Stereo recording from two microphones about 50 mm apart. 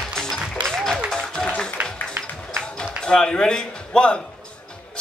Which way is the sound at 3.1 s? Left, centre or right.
Centre.